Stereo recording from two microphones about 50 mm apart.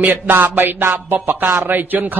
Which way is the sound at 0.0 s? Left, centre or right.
Right.